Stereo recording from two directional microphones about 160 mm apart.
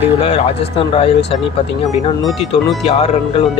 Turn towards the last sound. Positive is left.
turn(degrees=40)  # may be behind; listen again after turning